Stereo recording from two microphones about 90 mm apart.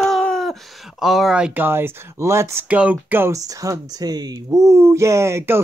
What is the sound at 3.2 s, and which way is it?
Speech, 40° right (ahead or behind).